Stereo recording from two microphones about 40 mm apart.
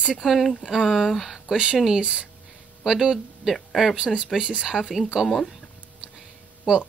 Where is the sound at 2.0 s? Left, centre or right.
Right.